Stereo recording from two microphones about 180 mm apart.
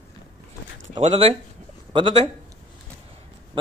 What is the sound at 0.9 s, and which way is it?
Speech, 35° right (ahead or behind).